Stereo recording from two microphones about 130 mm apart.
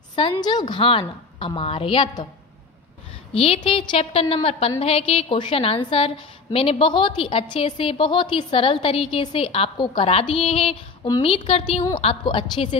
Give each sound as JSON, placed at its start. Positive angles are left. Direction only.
{"t": 0.1, "sound": "a woman's voice", "side_deg": 40}
{"t": 3.3, "sound": "a woman's voice", "side_deg": 45}